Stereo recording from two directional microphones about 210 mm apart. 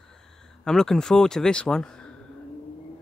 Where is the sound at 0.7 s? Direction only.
5° left (ahead or behind).